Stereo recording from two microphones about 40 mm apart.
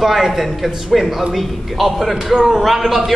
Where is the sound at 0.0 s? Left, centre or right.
Centre.